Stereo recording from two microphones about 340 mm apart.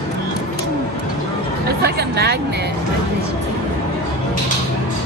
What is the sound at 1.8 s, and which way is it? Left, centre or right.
Chatter, right.